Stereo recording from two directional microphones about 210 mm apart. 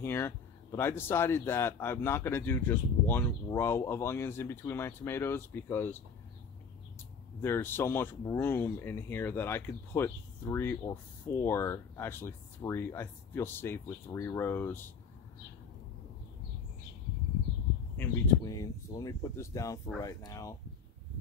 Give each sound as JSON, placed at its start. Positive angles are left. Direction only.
{"t": 0.0, "sound": "speech", "side_deg": 10}
{"t": 7.4, "sound": "speech", "side_deg": 10}
{"t": 17.9, "sound": "speech", "side_deg": 15}